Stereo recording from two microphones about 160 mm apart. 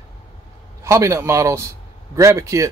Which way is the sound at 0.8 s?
20° right (ahead or behind).